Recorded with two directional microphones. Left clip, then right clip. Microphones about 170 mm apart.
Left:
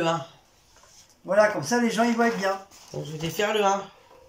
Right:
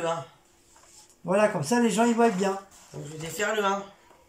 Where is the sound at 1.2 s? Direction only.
20° right (ahead or behind).